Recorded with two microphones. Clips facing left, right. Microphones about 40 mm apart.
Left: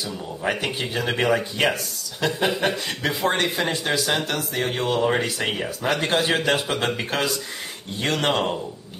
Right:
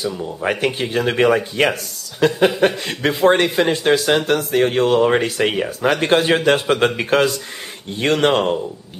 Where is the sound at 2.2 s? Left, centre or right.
Right.